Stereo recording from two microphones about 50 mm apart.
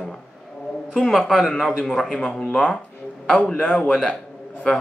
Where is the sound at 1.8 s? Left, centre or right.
Centre.